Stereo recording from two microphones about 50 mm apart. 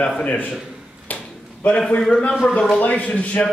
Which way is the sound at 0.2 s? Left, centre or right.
Left.